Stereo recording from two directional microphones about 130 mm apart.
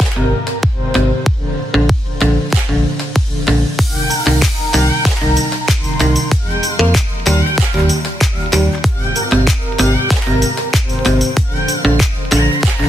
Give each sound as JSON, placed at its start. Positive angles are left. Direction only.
{"t": 0.6, "sound": "music", "side_deg": 0}